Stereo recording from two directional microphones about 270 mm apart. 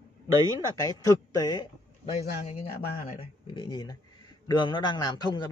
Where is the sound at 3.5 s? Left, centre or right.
Centre.